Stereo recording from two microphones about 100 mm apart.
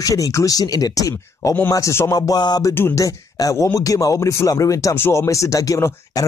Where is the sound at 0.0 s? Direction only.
35° left (ahead or behind).